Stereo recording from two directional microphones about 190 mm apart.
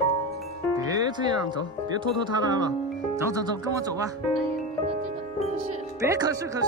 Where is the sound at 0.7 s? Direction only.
20° right (ahead or behind).